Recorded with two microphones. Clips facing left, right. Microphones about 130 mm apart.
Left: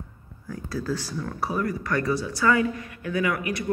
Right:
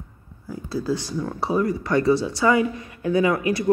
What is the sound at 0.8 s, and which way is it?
Speech, 20° right (ahead or behind).